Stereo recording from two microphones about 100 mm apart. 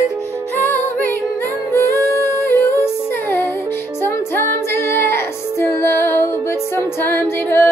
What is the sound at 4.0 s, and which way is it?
Music, 25° left (ahead or behind).